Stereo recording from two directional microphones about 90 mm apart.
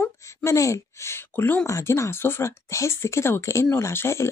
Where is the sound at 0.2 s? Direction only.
35° left (ahead or behind).